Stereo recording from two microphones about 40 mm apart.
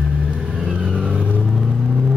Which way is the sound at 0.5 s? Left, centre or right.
Centre.